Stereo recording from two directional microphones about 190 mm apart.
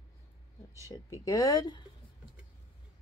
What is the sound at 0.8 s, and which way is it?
Speech, 15° left (ahead or behind).